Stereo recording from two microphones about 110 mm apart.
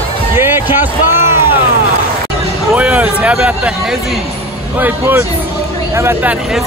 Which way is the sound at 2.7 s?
10° right (ahead or behind).